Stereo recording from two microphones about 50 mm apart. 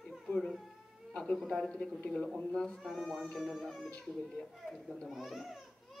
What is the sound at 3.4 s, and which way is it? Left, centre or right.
A child's voice, centre.